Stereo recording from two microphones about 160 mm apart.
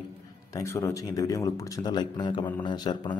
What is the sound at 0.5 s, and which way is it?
Speech, 20° left (ahead or behind).